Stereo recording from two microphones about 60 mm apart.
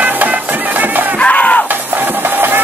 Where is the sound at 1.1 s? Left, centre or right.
Left.